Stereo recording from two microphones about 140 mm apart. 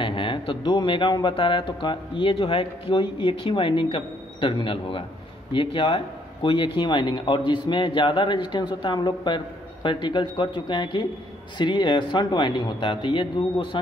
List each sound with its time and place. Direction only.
0.0 s speech: 35° left (ahead or behind)